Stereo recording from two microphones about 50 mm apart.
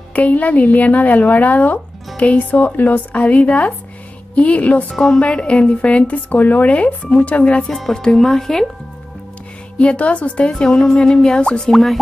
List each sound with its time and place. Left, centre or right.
0.1 s a woman's voice: left
4.9 s speech: centre
5.2 s speech: centre
7.7 s speech: centre
9.8 s speech: left
11.7 s speech: centre